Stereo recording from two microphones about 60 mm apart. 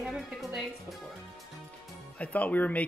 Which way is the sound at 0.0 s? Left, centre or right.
Centre.